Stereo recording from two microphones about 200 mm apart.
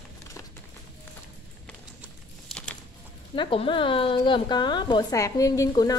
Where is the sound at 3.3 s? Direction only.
25° left (ahead or behind).